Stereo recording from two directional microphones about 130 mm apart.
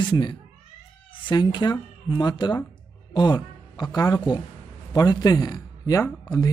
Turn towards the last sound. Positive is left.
turn(degrees=25)  # may be behind; listen again after turning